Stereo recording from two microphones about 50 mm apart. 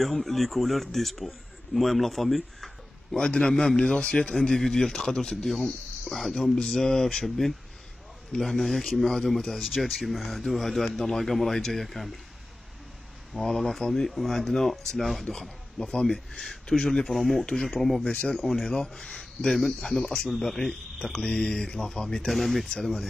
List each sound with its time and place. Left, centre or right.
0.0 s a man's voice: centre
3.2 s a man's voice: centre
13.3 s a man's voice: centre
18.0 s speech: centre
18.3 s a man's voice: centre
22.3 s a man's voice: centre
22.7 s speech: centre